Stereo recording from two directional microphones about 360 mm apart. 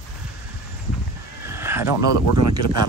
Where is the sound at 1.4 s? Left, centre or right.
Centre.